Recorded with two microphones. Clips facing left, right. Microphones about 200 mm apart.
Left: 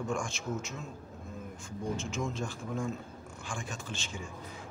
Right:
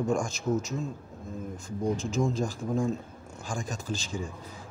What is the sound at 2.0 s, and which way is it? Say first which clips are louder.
A man's voice: right 7 dB; 35° right (ahead or behind).